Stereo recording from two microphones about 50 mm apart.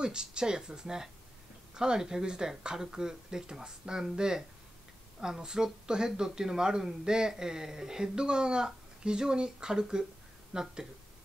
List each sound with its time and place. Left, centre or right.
0.0 s speech: centre